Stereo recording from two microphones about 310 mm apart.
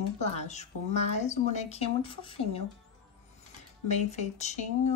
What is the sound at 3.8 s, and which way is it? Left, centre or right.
Speech, left.